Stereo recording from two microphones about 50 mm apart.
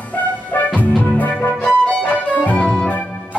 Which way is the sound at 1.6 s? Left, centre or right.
Left.